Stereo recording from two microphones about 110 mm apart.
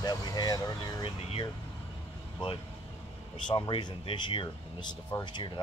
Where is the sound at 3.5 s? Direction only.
45° left (ahead or behind).